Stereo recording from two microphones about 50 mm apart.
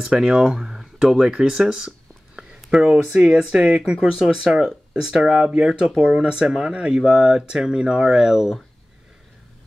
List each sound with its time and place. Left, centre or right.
0.0 s speech: centre